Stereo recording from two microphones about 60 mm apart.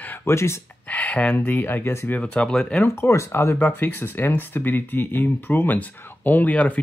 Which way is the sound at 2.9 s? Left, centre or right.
Left.